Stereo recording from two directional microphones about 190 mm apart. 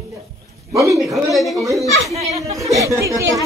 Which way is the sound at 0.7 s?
15° right (ahead or behind).